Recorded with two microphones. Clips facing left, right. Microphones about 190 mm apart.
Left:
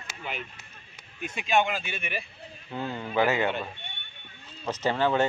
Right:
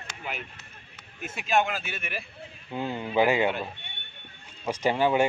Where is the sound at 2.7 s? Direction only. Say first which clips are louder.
Right 2 dB; 15° right (ahead or behind).